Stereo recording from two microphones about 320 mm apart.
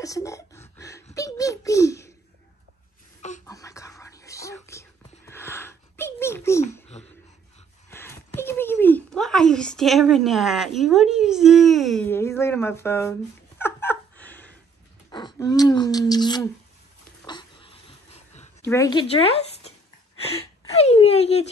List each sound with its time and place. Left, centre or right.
0.0 s speech: centre
3.2 s a sound: left
3.4 s whispering: centre
7.0 s a sound: left
7.9 s speech: centre
13.6 s a sound: centre
15.0 s speech: centre
17.2 s dog: centre
18.7 s speech: centre